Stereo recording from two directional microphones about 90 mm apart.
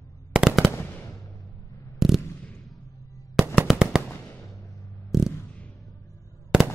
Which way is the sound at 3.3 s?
5° left (ahead or behind).